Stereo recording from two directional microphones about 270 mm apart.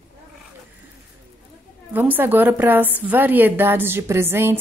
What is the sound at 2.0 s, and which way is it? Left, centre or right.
A woman's voice, centre.